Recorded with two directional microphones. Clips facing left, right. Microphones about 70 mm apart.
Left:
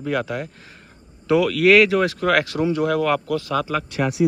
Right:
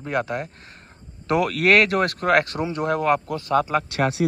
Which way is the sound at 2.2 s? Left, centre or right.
Right.